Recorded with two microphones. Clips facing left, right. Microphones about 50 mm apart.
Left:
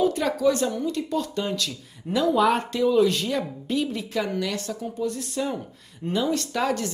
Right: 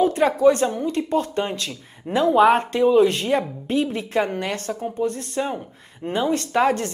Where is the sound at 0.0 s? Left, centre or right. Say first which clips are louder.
Right 5 dB; right.